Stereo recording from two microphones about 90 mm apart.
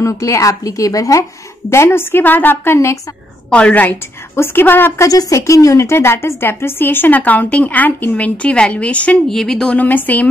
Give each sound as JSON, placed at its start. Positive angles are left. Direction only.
{"t": 0.0, "sound": "a woman's voice", "side_deg": 35}
{"t": 1.7, "sound": "a woman's voice", "side_deg": 30}
{"t": 3.4, "sound": "a woman's voice", "side_deg": 10}
{"t": 5.0, "sound": "a woman's voice", "side_deg": 35}
{"t": 9.3, "sound": "speech", "side_deg": 5}
{"t": 9.8, "sound": "a woman's voice", "side_deg": 20}